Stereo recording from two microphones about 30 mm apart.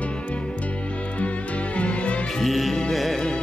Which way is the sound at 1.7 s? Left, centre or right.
Left.